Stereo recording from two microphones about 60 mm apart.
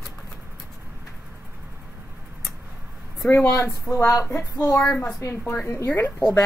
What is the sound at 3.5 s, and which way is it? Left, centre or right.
Speech, left.